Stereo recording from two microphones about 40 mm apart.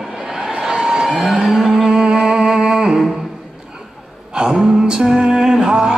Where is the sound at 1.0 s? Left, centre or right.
Centre.